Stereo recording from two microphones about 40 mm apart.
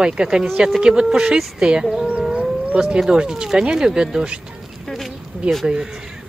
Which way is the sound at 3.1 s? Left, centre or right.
Centre.